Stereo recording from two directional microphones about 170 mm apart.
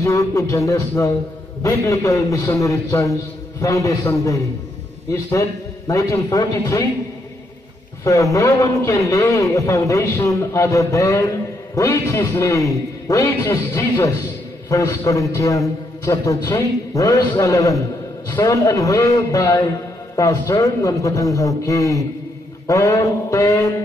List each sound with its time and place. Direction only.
0.0 s a man's voice: 20° left (ahead or behind)
5.9 s a man's voice: 20° left (ahead or behind)
8.0 s a man's voice: 20° left (ahead or behind)